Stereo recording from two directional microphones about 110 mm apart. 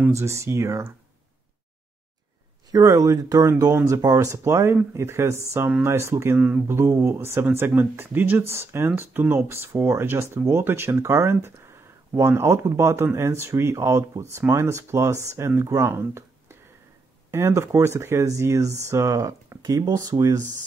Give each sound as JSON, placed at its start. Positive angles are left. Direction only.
{"t": 0.1, "sound": "speech", "side_deg": -25}
{"t": 2.7, "sound": "speech", "side_deg": -30}
{"t": 6.3, "sound": "speech", "side_deg": -10}
{"t": 6.7, "sound": "speech", "side_deg": -25}
{"t": 15.9, "sound": "a sound", "side_deg": -20}
{"t": 17.3, "sound": "speech", "side_deg": -25}